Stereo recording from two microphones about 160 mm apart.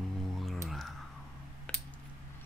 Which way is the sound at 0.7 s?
Centre (ahead or behind).